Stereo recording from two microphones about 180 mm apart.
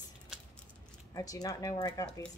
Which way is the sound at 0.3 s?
5° right (ahead or behind).